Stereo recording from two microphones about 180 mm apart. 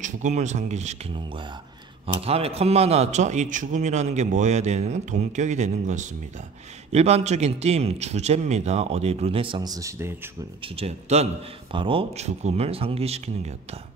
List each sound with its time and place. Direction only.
0.0 s a man's voice: 40° right (ahead or behind); by 10.3 s 15° right (ahead or behind)
10.6 s a man's voice: 35° right (ahead or behind)